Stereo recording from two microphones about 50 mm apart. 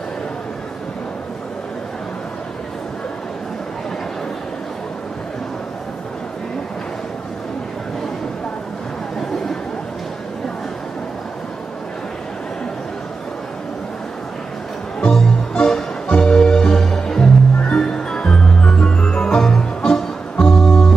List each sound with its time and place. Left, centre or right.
15.1 s music: centre